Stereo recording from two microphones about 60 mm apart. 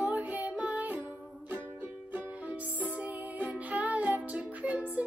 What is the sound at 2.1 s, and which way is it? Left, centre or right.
Music, right.